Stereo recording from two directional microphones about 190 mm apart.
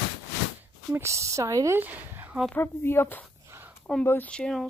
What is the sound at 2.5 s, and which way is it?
Speech, 10° left (ahead or behind).